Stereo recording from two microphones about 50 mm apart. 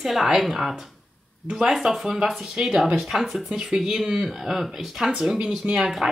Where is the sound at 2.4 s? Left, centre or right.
Centre.